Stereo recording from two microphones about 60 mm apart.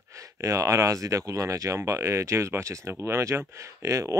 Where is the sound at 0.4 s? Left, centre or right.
Right.